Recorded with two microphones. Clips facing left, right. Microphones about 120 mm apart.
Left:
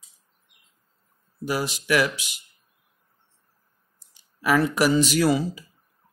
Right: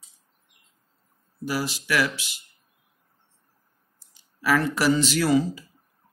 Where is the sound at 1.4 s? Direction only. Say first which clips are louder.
Left 1 dB; 20° left (ahead or behind).